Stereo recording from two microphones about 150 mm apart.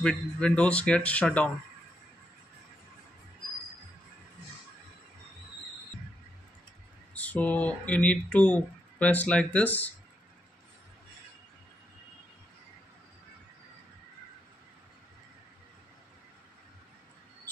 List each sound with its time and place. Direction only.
0.0 s speech: 5° left (ahead or behind)
7.2 s speech: 10° left (ahead or behind)